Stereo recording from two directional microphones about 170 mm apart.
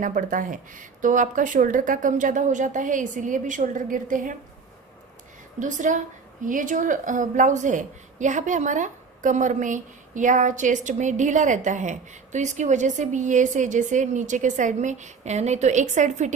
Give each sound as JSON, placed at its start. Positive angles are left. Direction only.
{"t": 0.0, "sound": "a woman's voice", "side_deg": -50}
{"t": 5.6, "sound": "a woman's voice", "side_deg": -50}